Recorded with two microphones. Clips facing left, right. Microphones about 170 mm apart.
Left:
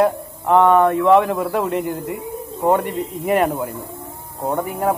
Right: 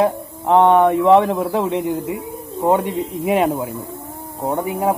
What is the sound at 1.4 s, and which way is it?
A man's voice, centre (ahead or behind).